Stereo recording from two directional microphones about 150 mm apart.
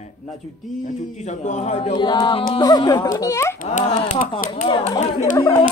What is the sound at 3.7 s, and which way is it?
Speech, 45° left (ahead or behind).